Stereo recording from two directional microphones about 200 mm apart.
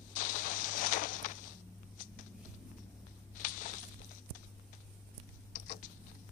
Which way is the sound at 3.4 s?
40° left (ahead or behind).